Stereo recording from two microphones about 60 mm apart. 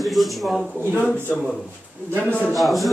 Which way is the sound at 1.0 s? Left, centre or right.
Left.